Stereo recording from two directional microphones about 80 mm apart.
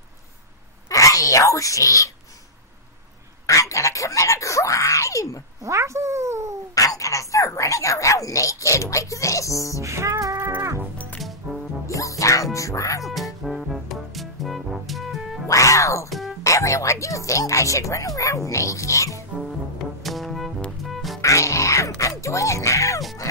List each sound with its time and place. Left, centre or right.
0.8 s wail: left
3.4 s a sound: left
5.6 s speech: right
6.7 s a woman's voice: left
9.8 s music: right
11.1 s music: centre
11.8 s music: left
12.5 s a woman's voice: left
13.0 s music: centre
15.4 s cat: left
16.1 s music: centre
16.4 s speech: left
20.0 s music: centre
21.2 s music: left